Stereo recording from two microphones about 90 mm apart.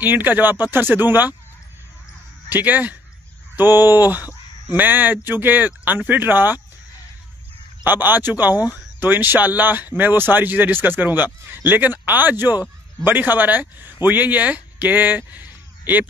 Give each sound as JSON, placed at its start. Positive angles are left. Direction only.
{"t": 0.0, "sound": "speech", "side_deg": -20}
{"t": 2.5, "sound": "speech", "side_deg": -20}
{"t": 7.8, "sound": "speech", "side_deg": -20}
{"t": 8.5, "sound": "speech", "side_deg": 45}
{"t": 9.0, "sound": "speech", "side_deg": -20}